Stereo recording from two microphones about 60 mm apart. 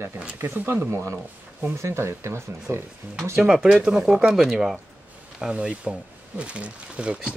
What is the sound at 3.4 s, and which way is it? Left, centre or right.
Speech, centre.